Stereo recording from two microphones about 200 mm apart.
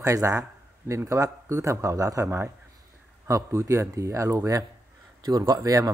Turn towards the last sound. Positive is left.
turn(degrees=-15)  # may be behind; listen again after turning